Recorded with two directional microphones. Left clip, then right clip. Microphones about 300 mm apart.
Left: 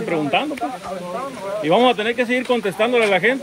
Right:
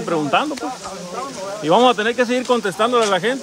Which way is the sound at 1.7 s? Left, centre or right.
Centre.